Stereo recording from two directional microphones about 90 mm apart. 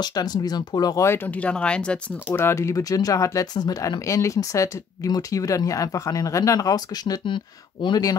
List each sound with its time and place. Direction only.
0.0 s speech: 50° left (ahead or behind)
1.0 s speech: 25° left (ahead or behind)
2.3 s speech: 30° left (ahead or behind); by 8.0 s 60° left (ahead or behind)